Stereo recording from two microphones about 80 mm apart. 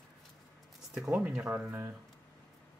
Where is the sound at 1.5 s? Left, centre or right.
Right.